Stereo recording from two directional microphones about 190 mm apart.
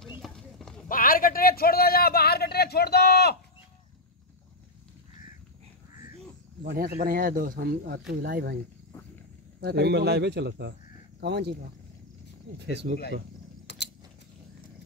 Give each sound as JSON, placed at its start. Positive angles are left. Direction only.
{"t": 0.2, "sound": "clip-clop", "side_deg": 0}
{"t": 0.8, "sound": "a sound", "side_deg": 50}
{"t": 6.7, "sound": "speech", "side_deg": -50}
{"t": 9.6, "sound": "speech", "side_deg": -60}
{"t": 12.5, "sound": "speech", "side_deg": -65}
{"t": 13.7, "sound": "mechanisms", "side_deg": 65}